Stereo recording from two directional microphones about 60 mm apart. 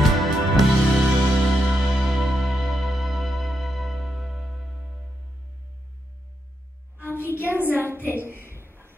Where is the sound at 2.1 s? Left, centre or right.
Centre.